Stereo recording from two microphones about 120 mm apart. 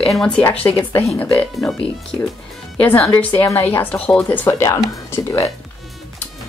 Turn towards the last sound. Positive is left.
turn(degrees=25)  # may be behind; listen again after turning